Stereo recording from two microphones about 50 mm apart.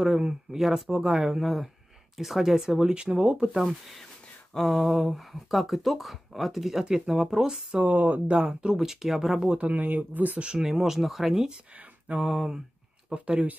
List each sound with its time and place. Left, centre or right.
0.0 s speech: centre
1.4 s speech: centre
2.9 s speech: right
3.5 s speech: centre
7.7 s speech: right
8.3 s speech: right; by 9.5 s centre
9.5 s speech: right
10.4 s speech: centre
11.7 s a sound: right
12.2 s speech: centre
13.1 s speech: right